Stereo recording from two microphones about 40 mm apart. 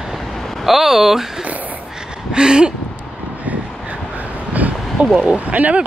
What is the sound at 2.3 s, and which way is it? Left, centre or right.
Speech, centre.